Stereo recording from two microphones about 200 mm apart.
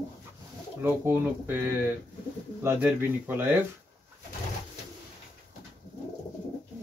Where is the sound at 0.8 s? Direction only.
10° right (ahead or behind).